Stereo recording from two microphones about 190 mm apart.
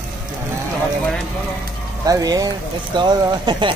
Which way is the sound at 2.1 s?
20° right (ahead or behind).